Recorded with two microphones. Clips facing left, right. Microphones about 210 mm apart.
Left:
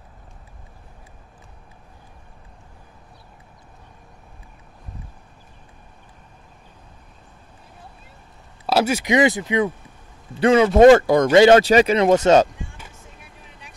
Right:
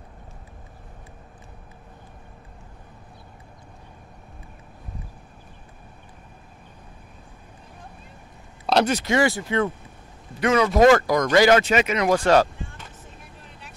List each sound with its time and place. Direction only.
8.6 s speech: 5° left (ahead or behind)
10.4 s speech: 30° left (ahead or behind); by 12.9 s 10° left (ahead or behind)